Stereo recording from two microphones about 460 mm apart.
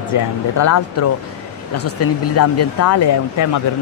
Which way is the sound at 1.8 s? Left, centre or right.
Left.